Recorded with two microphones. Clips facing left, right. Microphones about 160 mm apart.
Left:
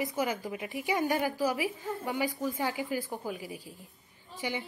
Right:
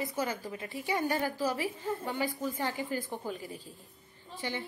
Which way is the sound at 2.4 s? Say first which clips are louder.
Left 2 dB; 15° left (ahead or behind).